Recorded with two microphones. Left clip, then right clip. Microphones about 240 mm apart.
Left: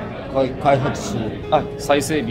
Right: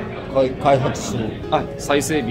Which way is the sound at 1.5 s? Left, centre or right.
Centre.